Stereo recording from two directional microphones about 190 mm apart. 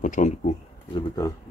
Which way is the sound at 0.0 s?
40° left (ahead or behind).